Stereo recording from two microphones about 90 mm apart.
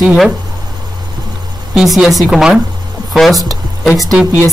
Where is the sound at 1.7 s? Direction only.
5° right (ahead or behind).